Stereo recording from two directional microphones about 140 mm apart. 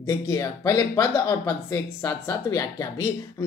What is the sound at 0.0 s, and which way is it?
Speech, 25° left (ahead or behind).